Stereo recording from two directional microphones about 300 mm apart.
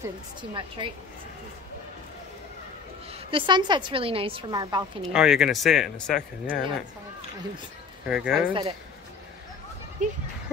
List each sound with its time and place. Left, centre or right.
0.0 s a woman's voice: centre
3.1 s a woman's voice: centre
5.0 s speech: centre
8.1 s speech: centre
10.0 s speech: right